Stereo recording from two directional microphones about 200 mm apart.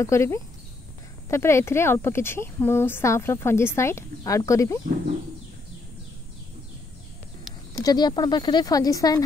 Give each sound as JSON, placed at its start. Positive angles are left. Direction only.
{"t": 0.0, "sound": "speech", "side_deg": 15}
{"t": 7.7, "sound": "speech", "side_deg": 20}